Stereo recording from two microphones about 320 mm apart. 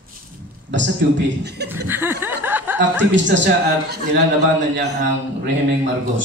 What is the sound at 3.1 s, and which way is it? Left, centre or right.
A man's voice, right.